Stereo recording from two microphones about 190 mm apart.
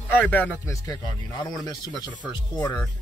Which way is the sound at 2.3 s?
20° left (ahead or behind).